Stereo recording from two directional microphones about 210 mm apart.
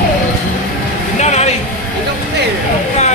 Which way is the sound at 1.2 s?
30° left (ahead or behind).